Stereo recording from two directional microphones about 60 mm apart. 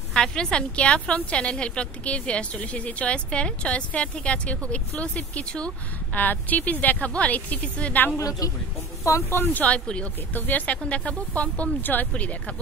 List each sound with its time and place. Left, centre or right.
0.1 s a woman's voice: centre
6.1 s a woman's voice: left
8.2 s speech: left
9.3 s a woman's voice: left